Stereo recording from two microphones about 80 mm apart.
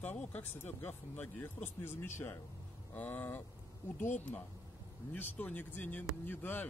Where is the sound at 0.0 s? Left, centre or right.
Left.